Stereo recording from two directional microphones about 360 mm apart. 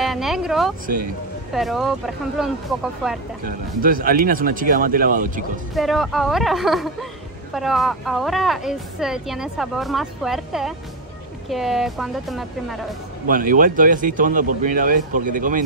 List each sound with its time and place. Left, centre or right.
0.0 s speech: centre
3.4 s speech: right
5.8 s speech: centre
13.3 s speech: right